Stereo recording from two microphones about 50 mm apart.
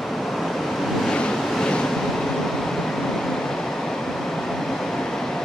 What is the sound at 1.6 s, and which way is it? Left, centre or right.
Vehicle, centre.